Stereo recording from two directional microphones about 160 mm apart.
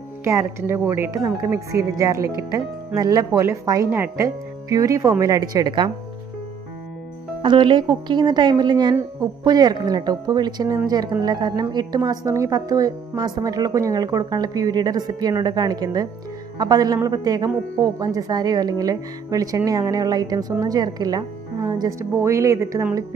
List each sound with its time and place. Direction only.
0.2 s a woman's voice: 15° right (ahead or behind)
7.4 s a woman's voice: 30° right (ahead or behind)